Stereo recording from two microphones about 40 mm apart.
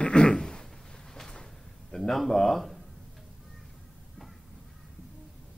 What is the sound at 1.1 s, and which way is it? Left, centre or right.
Cupboard open or close, centre.